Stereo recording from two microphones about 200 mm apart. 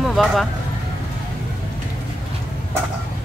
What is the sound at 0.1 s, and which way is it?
Speech, centre (ahead or behind).